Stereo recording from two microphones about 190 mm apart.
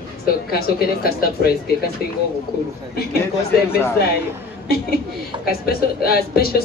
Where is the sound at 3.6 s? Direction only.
10° left (ahead or behind).